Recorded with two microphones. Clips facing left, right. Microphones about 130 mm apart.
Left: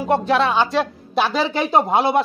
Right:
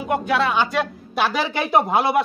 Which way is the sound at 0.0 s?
30° left (ahead or behind).